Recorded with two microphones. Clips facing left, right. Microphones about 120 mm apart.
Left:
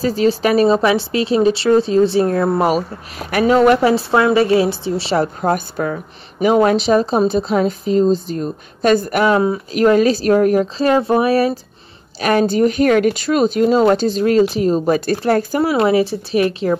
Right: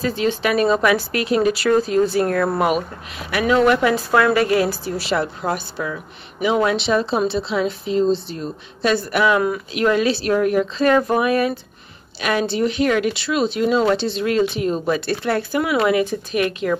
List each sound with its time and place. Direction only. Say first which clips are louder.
0.0 s a woman's voice: left 5 dB; 35° left (ahead or behind)
2.6 s speech: left 3 dB; 40° left (ahead or behind)
3.9 s a woman's voice: left 3 dB; 25° left (ahead or behind)